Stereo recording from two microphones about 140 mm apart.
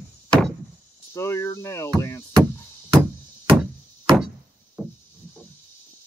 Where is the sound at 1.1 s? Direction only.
20° left (ahead or behind).